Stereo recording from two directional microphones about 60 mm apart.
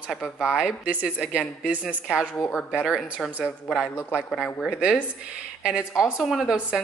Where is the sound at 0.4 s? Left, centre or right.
Centre.